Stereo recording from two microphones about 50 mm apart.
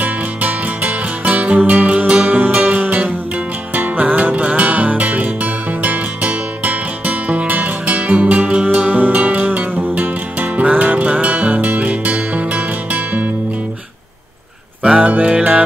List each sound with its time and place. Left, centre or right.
0.0 s music: right
15.0 s music: right